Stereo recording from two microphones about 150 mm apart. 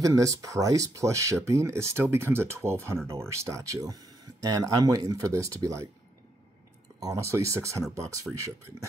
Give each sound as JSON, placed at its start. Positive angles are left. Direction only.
{"t": 0.0, "sound": "speech", "side_deg": -20}
{"t": 7.0, "sound": "speech", "side_deg": -20}